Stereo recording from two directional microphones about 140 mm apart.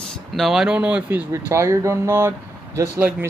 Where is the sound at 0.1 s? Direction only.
Centre (ahead or behind).